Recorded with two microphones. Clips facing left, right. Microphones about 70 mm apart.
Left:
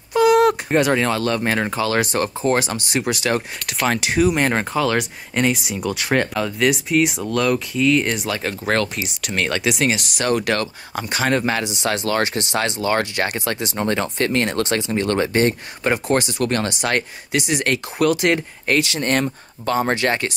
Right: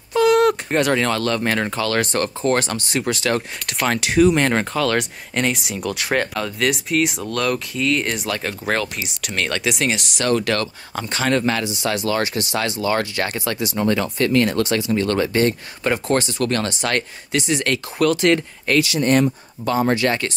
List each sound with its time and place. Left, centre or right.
0.1 s speech: centre
10.2 s speech: centre
12.1 s speech: left
13.0 s speech: left
13.5 s speech: left; by 18.4 s centre
18.9 s speech: left
19.8 s speech: left